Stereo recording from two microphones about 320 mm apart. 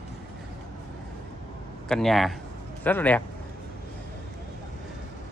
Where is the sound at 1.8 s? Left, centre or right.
Centre.